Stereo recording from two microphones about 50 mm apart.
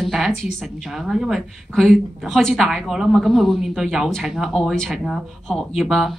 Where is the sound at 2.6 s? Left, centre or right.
Centre.